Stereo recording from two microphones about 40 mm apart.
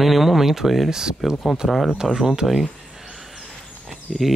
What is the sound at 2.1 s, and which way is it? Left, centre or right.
Speech, centre.